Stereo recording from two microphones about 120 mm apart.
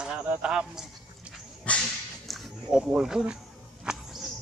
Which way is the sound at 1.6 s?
5° left (ahead or behind).